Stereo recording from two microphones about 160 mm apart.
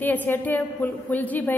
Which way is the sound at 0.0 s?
10° left (ahead or behind).